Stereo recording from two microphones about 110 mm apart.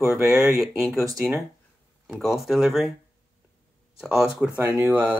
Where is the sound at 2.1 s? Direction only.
Centre (ahead or behind).